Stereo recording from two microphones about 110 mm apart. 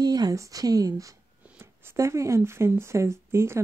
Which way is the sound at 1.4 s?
20° right (ahead or behind).